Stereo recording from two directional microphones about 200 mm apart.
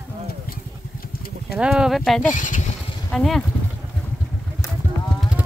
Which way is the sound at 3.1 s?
Centre (ahead or behind).